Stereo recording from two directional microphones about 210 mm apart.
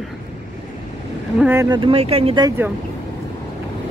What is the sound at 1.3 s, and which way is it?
Speech, 10° right (ahead or behind).